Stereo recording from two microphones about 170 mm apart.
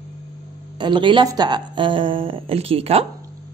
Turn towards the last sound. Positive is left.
turn(degrees=-35)  # may be behind; listen again after turning